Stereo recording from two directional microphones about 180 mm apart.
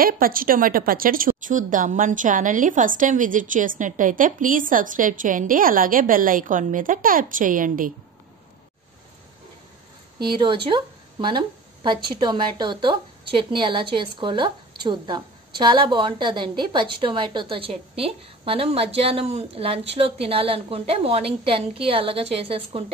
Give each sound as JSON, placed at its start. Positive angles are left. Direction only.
{"t": 0.0, "sound": "a woman's voice", "side_deg": -50}
{"t": 10.3, "sound": "a woman's voice", "side_deg": -25}